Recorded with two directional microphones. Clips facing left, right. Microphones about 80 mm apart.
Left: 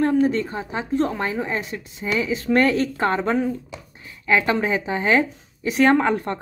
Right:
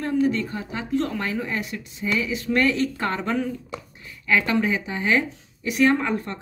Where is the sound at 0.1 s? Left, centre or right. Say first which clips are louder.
Left 3 dB; left.